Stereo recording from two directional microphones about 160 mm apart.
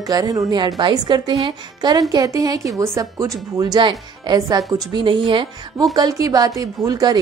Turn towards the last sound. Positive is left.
turn(degrees=-25)  # may be behind; listen again after turning